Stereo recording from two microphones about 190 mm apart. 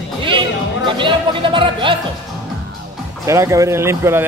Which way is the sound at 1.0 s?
25° right (ahead or behind).